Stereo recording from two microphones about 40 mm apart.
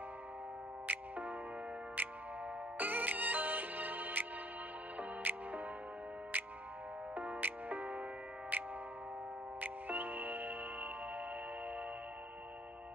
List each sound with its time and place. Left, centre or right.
0.8 s music: right